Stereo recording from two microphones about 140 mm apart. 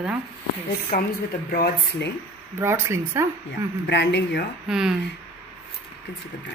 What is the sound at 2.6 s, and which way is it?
Speech, 20° right (ahead or behind).